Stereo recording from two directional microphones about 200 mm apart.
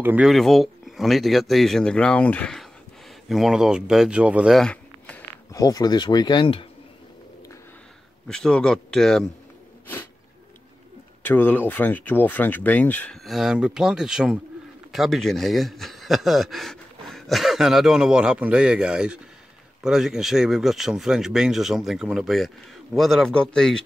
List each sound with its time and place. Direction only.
0.0 s speech: 5° right (ahead or behind)
5.5 s speech: 20° left (ahead or behind)
8.3 s speech: 5° left (ahead or behind)
11.2 s speech: 10° left (ahead or behind)